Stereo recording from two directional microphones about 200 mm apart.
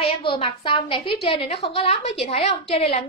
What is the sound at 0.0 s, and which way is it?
A woman's voice, 25° left (ahead or behind).